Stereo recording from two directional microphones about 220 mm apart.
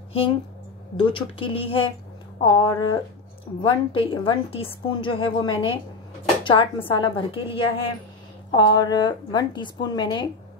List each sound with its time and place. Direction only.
0.9 s a woman's voice: 20° left (ahead or behind)